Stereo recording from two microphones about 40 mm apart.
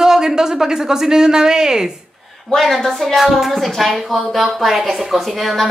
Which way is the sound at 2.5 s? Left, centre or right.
Centre.